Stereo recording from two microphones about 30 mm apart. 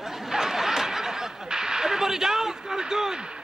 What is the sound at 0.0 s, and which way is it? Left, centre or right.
Snicker, centre.